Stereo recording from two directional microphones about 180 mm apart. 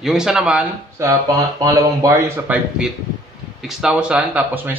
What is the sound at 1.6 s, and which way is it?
Speech, 20° right (ahead or behind).